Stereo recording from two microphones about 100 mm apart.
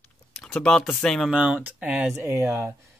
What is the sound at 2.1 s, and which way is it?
Speech, 30° right (ahead or behind).